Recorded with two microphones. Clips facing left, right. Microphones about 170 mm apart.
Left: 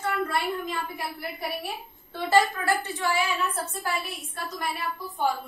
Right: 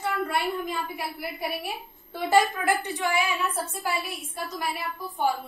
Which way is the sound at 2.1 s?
15° right (ahead or behind).